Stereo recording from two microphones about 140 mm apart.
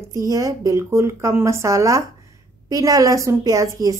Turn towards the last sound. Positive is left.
turn(degrees=-25)  # may be behind; listen again after turning